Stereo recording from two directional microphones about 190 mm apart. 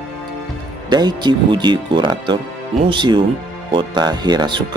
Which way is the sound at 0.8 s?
25° right (ahead or behind).